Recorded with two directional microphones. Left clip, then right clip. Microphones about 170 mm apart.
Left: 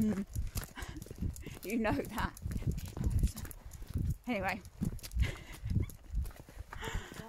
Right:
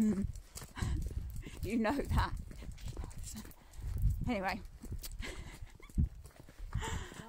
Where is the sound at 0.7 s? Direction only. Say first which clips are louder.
Right 1 dB; 20° right (ahead or behind).